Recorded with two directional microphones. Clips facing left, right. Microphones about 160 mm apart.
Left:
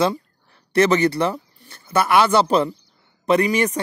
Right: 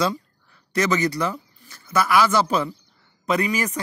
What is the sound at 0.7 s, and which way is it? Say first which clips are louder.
A man's voice: left 5 dB; 30° left (ahead or behind).